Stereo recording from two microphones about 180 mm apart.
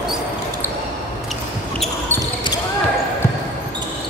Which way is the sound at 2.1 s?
20° left (ahead or behind).